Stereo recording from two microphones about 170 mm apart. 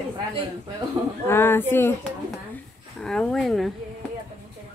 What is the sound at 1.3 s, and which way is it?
Speech, 15° left (ahead or behind).